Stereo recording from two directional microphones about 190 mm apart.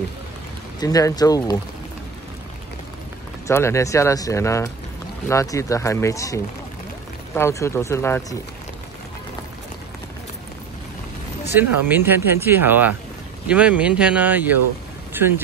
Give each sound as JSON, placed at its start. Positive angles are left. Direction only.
{"t": 0.7, "sound": "speech", "side_deg": 20}
{"t": 3.4, "sound": "speech", "side_deg": 15}
{"t": 11.5, "sound": "speech", "side_deg": -10}